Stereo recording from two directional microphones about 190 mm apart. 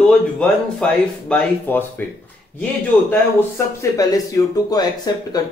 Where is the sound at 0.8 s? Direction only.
5° left (ahead or behind).